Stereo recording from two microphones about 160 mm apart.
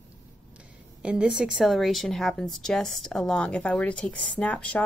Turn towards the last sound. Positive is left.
turn(degrees=10)  # may be behind; listen again after turning